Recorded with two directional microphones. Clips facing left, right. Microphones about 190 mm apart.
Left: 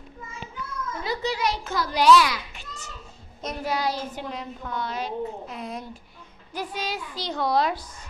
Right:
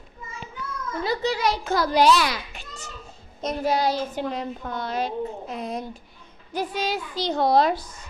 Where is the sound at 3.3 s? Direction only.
25° right (ahead or behind).